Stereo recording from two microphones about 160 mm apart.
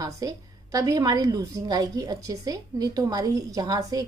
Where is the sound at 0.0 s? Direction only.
20° right (ahead or behind).